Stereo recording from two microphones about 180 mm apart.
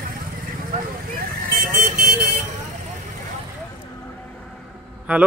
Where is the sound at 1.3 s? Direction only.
55° right (ahead or behind).